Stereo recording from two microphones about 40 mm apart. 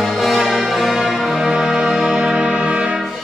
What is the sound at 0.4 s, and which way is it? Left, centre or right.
Music, centre.